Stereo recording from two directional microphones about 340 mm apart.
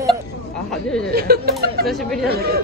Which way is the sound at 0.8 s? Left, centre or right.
Centre.